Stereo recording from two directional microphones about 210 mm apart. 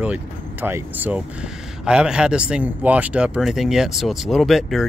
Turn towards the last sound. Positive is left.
turn(degrees=0)  # may be behind; listen again after turning